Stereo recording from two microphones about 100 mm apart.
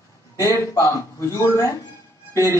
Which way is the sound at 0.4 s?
30° left (ahead or behind).